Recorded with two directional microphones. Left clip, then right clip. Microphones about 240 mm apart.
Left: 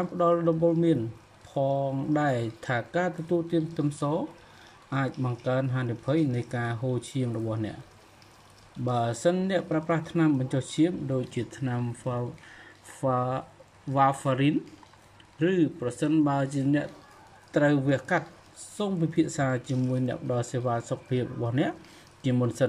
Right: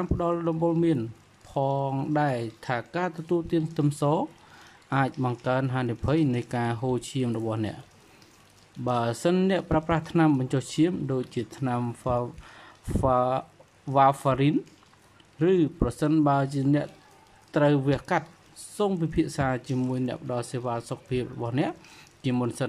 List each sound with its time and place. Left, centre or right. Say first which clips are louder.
0.0 s speech: left 3 dB; right
8.8 s speech: even; right